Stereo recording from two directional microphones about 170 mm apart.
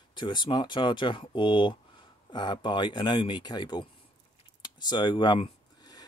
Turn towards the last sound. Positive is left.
turn(degrees=25)  # may be behind; listen again after turning